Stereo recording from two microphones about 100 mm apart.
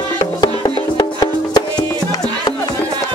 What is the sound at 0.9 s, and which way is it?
Music, 40° left (ahead or behind).